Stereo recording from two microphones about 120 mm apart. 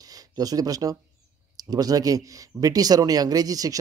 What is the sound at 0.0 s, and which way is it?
Speech, 30° right (ahead or behind).